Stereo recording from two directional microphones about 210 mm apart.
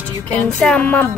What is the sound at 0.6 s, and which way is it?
Speech, 5° left (ahead or behind).